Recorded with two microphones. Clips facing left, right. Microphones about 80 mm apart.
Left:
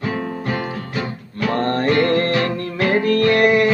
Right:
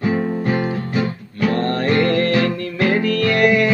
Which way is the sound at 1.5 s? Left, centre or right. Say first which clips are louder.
Even; left.